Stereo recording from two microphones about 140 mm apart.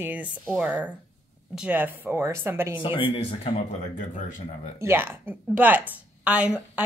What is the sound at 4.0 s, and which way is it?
Speech, 70° left (ahead or behind).